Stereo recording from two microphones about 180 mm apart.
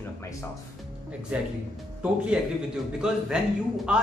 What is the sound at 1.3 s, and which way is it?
Speech, 5° right (ahead or behind).